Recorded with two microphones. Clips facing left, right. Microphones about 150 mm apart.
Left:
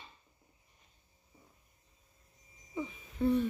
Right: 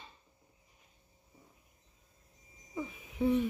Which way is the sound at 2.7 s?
5° right (ahead or behind).